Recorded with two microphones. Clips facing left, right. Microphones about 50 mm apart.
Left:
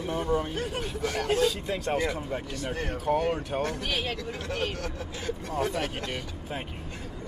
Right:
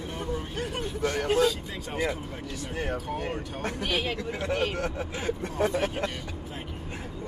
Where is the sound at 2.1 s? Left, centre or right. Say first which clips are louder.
Left 2 dB; left.